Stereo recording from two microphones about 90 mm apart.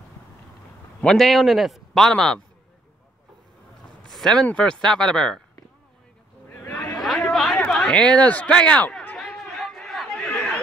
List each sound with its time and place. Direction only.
1.0 s a man's voice: centre (ahead or behind)
4.1 s speech: 5° left (ahead or behind)
6.6 s a sound: 25° left (ahead or behind)
7.0 s chatter: centre (ahead or behind)
7.7 s speech: 5° left (ahead or behind)
9.1 s chatter: 5° left (ahead or behind)